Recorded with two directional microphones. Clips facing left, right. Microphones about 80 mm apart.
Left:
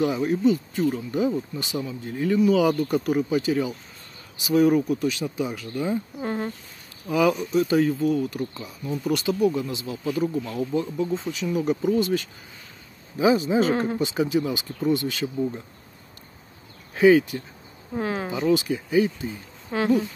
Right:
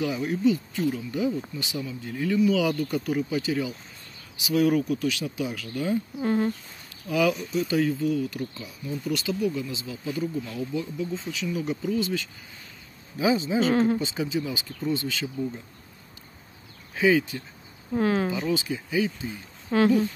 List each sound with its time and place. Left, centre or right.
0.0 s speech: left
13.7 s speech: centre
14.0 s speech: left
17.9 s speech: centre
18.3 s speech: left
19.7 s speech: centre